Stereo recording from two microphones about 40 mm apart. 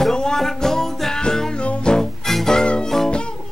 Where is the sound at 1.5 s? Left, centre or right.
Left.